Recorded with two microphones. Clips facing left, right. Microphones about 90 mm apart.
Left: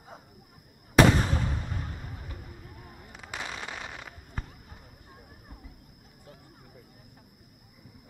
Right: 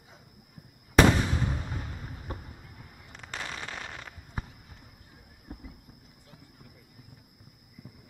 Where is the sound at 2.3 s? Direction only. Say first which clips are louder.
Right 5 dB; 40° right (ahead or behind).